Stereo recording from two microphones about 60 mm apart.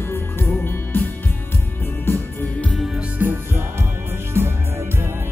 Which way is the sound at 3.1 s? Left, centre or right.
Right.